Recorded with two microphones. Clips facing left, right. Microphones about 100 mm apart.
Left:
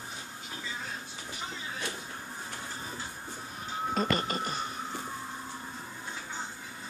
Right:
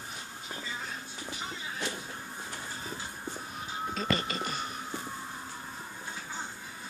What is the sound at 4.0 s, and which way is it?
Speech, 40° left (ahead or behind).